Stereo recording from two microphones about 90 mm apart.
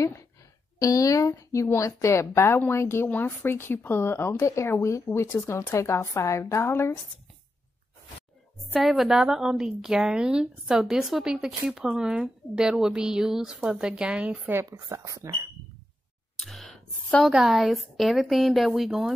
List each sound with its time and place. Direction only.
0.7 s speech: 40° left (ahead or behind)
8.7 s a woman's voice: centre (ahead or behind)
14.7 s speech: 35° right (ahead or behind)
16.3 s sigh: centre (ahead or behind)
17.3 s speech: 5° right (ahead or behind)